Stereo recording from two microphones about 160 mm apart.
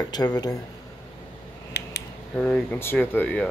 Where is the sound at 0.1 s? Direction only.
25° left (ahead or behind).